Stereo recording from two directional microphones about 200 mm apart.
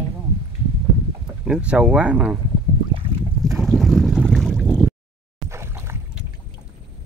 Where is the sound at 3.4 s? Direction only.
Centre (ahead or behind).